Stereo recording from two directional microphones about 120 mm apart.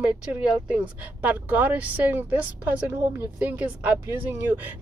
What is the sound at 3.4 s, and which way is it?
Speech, 15° right (ahead or behind).